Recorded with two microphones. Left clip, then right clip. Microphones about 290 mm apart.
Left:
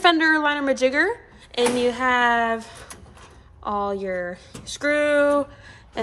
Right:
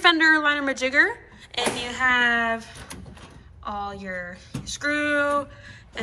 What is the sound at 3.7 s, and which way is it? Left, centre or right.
A woman's voice, centre.